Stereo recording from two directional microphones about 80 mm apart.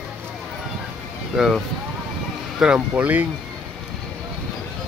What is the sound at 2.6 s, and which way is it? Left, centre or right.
Speech, centre.